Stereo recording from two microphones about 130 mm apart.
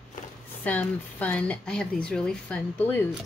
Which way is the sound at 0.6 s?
10° left (ahead or behind).